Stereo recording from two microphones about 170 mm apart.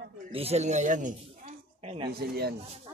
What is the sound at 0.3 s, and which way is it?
Speech, 35° right (ahead or behind).